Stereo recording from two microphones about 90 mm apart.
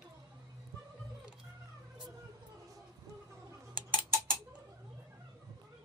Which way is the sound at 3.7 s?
20° right (ahead or behind).